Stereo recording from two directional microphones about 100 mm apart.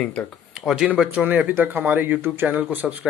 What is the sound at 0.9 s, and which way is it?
Speech, 15° right (ahead or behind).